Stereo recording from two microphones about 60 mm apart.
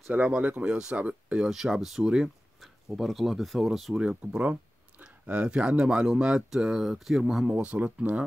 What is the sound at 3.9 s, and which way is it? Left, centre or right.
Speech, centre.